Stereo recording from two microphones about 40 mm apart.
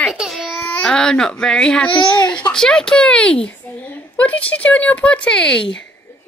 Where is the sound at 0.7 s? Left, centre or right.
Left.